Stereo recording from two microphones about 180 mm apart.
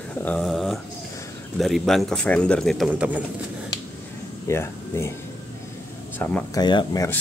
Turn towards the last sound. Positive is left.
turn(degrees=20)  # may be behind; listen again after turning